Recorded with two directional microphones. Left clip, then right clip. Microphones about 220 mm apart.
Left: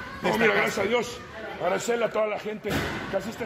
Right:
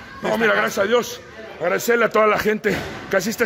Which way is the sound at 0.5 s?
40° right (ahead or behind).